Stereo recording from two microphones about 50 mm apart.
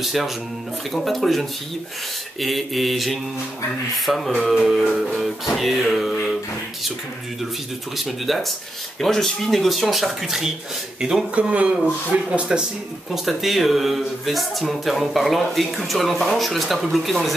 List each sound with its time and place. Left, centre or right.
0.0 s speech: centre
8.0 s speech: centre
11.3 s speech: right
13.1 s speech: centre